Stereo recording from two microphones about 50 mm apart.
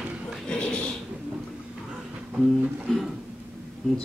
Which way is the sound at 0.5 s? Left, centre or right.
Centre.